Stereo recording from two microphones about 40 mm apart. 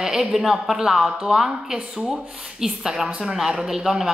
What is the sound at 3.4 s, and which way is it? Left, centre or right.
Speech, centre.